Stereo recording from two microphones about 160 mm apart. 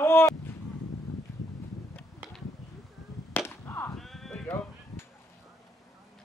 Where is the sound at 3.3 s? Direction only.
15° left (ahead or behind).